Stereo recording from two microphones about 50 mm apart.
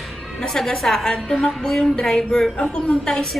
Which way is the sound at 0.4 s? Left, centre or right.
Centre.